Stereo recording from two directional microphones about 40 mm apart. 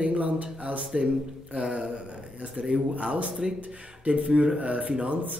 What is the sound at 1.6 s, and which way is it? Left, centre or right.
Speech, centre.